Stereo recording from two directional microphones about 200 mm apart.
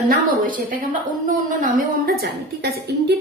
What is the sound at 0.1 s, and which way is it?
A woman's voice, 45° right (ahead or behind).